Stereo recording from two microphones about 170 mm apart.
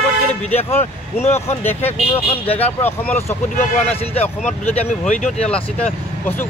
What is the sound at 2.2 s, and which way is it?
Speech, 35° left (ahead or behind).